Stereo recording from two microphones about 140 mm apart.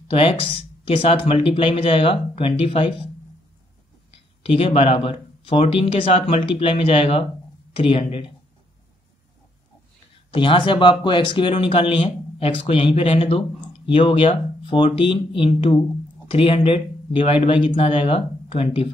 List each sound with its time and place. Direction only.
0.1 s speech: 40° left (ahead or behind)
4.4 s speech: 40° left (ahead or behind)
10.1 s speech: 40° left (ahead or behind)